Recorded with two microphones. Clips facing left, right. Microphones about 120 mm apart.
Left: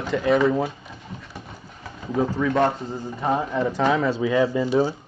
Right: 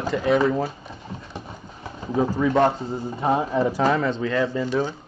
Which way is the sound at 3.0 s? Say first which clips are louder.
Right 1 dB; 25° right (ahead or behind).